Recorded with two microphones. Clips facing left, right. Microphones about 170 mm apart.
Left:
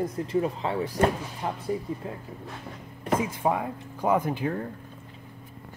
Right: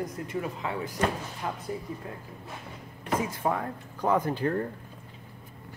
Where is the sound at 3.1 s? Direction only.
25° left (ahead or behind).